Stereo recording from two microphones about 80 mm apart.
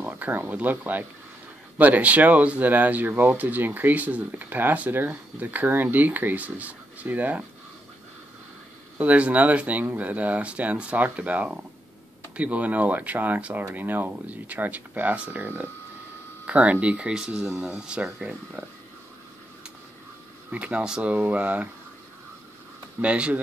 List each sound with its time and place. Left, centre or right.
0.0 s speech: right
8.9 s speech: centre
20.5 s speech: centre
22.9 s speech: centre